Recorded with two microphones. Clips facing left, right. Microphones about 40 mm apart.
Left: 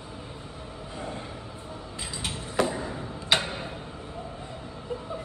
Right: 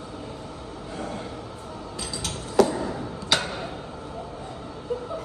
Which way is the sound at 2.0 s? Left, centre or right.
Left.